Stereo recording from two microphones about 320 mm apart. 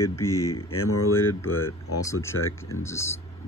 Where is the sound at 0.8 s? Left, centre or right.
Left.